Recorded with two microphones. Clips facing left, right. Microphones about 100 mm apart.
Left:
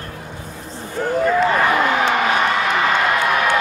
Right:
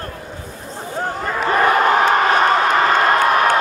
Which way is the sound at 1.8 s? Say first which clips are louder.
Right 3 dB; 45° right (ahead or behind).